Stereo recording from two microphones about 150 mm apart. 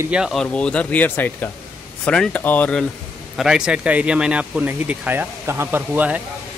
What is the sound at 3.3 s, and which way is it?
Speech, 5° right (ahead or behind).